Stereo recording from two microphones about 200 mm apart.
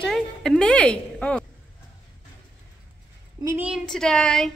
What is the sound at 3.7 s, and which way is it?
Speech, centre (ahead or behind).